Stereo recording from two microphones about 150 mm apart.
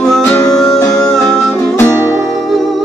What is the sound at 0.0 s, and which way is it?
Music, 5° left (ahead or behind).